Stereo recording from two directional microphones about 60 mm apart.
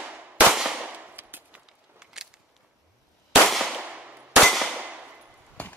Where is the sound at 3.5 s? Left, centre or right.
Centre.